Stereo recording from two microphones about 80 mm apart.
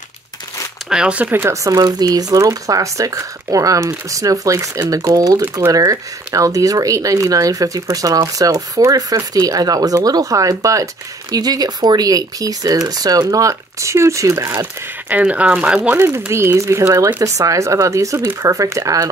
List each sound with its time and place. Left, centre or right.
0.8 s speech: centre
1.2 s speech: right
1.5 s speech: right
11.3 s speech: right
15.0 s speech: centre
16.0 s speech: right